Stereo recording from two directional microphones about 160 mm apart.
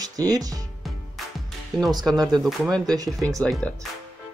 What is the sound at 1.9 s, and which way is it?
Speech, 25° right (ahead or behind).